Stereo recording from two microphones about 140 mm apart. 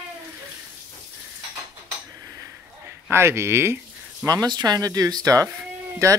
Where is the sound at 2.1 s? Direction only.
25° right (ahead or behind).